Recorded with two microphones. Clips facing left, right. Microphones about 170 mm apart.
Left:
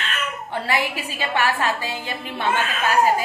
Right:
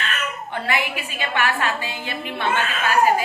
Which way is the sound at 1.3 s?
40° left (ahead or behind).